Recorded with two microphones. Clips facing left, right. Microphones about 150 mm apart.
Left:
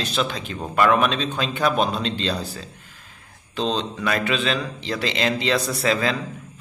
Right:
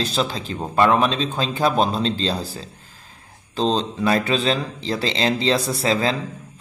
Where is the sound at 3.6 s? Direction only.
35° right (ahead or behind).